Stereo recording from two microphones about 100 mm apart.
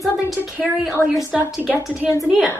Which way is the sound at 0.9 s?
30° left (ahead or behind).